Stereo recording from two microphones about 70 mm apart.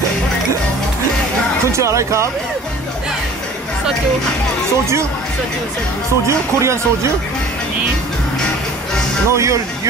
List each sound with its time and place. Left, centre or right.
1.7 s speech: right
6.2 s speech: right
9.3 s speech: right